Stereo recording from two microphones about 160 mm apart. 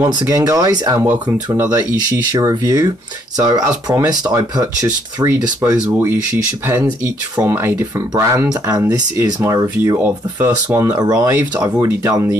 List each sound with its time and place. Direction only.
0.0 s speech: 20° right (ahead or behind)
1.0 s speech: 10° right (ahead or behind)
2.0 s speech: 20° right (ahead or behind)
7.3 s speech: 15° right (ahead or behind)